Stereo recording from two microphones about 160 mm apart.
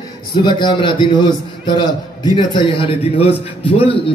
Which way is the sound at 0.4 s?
30° left (ahead or behind).